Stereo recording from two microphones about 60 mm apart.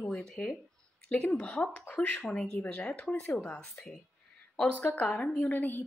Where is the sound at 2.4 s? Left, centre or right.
Centre.